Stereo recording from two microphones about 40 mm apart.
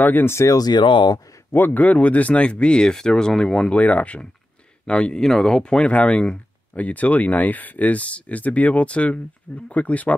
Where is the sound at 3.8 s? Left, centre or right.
Left.